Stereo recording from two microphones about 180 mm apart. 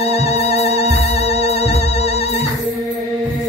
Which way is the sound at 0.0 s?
35° left (ahead or behind).